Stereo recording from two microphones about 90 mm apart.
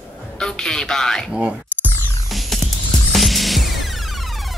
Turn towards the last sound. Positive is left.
turn(degrees=0)  # may be behind; listen again after turning